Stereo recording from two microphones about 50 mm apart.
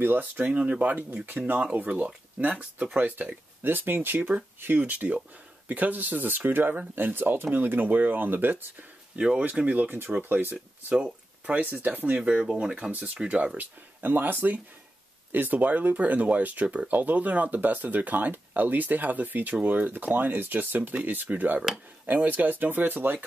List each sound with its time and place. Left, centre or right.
0.0 s speech: right
0.5 s speech: right
11.0 s speech: right
12.2 s speech: centre; by 23.2 s right